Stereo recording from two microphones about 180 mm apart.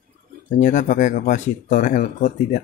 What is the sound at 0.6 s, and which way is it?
Speech, 45° left (ahead or behind).